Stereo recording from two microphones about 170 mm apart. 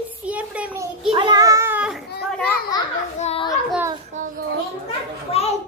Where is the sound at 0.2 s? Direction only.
10° right (ahead or behind).